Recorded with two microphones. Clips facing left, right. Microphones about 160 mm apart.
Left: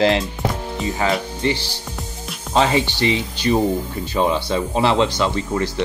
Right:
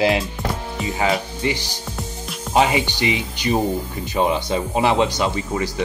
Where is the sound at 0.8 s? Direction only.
15° right (ahead or behind).